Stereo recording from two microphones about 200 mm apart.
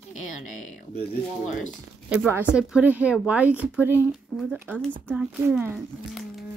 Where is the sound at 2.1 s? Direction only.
10° right (ahead or behind).